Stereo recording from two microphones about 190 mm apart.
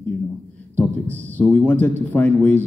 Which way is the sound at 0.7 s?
10° left (ahead or behind).